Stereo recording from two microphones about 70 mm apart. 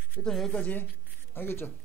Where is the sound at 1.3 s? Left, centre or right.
Left.